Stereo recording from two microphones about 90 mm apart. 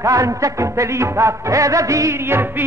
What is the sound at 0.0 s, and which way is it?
Music, 35° right (ahead or behind).